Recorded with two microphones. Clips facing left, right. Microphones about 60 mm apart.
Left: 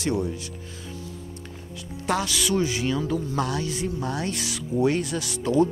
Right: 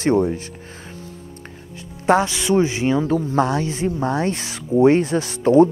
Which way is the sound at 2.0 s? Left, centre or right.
Right.